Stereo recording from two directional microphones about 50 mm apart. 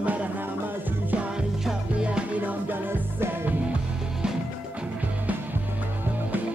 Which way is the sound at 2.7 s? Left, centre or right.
Right.